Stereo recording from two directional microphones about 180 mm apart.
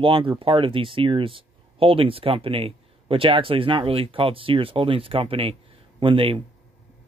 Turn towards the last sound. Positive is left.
turn(degrees=-30)  # may be behind; listen again after turning